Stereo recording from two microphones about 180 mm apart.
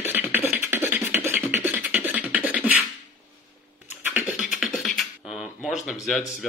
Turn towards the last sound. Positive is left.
turn(degrees=0)  # may be behind; listen again after turning